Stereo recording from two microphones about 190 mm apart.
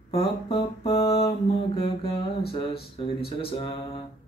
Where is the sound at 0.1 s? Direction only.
30° left (ahead or behind).